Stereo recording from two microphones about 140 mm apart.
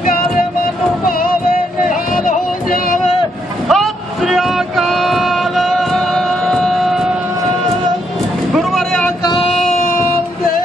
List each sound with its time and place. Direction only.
1.9 s boat: 75° left (ahead or behind)
3.6 s a sound: centre (ahead or behind)
8.5 s vehicle: centre (ahead or behind)
9.8 s child singing: 75° left (ahead or behind)